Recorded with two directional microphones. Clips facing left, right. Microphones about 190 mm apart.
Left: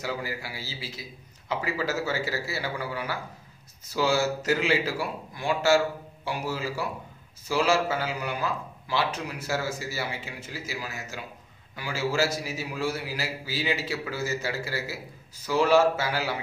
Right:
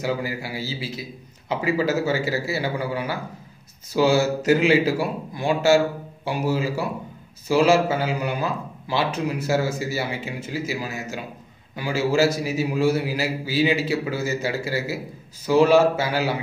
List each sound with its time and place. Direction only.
0.0 s a man's voice: 20° right (ahead or behind)